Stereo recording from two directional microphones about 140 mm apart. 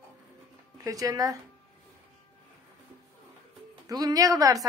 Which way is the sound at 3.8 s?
25° right (ahead or behind).